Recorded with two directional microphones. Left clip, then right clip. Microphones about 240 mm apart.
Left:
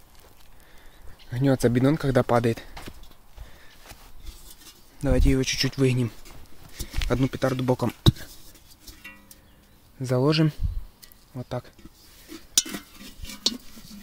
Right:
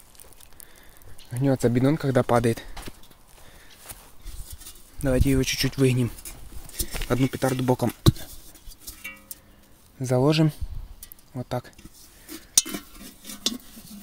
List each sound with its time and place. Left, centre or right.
1.3 s speech: centre
5.0 s speech: centre
8.8 s music: right
9.9 s speech: centre
11.3 s speech: centre
12.7 s a sound: centre